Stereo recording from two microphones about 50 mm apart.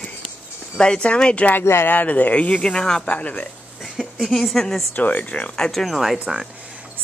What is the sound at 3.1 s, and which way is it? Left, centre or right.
Speech, left.